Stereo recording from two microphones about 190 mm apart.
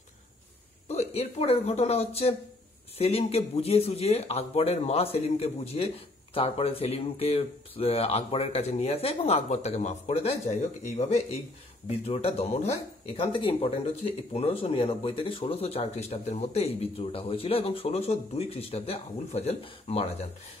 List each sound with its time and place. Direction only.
0.8 s speech: 35° left (ahead or behind)